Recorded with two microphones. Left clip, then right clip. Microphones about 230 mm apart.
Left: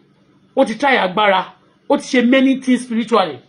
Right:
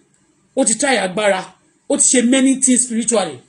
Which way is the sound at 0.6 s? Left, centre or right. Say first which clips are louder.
Left 2 dB; centre.